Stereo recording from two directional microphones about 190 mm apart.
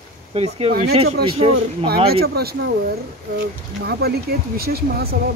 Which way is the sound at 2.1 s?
55° right (ahead or behind).